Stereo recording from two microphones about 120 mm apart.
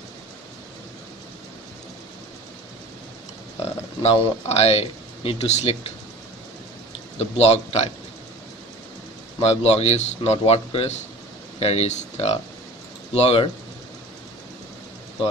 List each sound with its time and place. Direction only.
4.0 s a man's voice: 60° left (ahead or behind)
7.2 s a man's voice: 60° left (ahead or behind)
9.4 s a man's voice: 60° left (ahead or behind)
13.1 s a man's voice: 55° left (ahead or behind)